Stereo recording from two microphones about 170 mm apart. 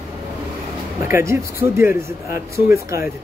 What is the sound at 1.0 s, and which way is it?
Speech, 15° right (ahead or behind).